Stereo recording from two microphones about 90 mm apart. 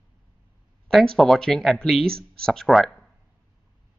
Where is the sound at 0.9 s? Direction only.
5° left (ahead or behind).